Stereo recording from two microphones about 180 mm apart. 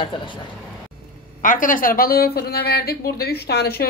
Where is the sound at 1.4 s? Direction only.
50° left (ahead or behind).